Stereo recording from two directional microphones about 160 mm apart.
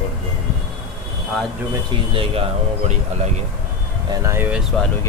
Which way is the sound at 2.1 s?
35° right (ahead or behind).